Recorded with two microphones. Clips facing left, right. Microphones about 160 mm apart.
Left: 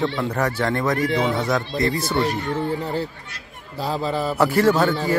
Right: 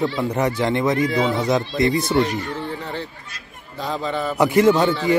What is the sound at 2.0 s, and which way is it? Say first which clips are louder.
Speech: right 2 dB; centre (ahead or behind).